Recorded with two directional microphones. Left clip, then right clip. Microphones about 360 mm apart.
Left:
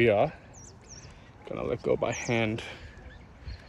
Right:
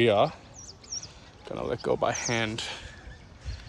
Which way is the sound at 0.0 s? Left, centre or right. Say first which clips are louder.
Right 1 dB; centre.